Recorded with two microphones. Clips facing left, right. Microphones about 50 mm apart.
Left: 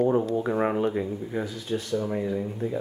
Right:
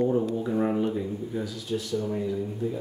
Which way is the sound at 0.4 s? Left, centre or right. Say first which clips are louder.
Left 1 dB; left.